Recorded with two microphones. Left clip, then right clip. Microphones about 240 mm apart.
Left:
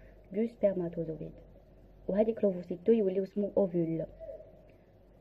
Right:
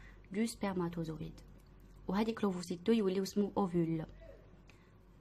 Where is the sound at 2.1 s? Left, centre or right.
Right.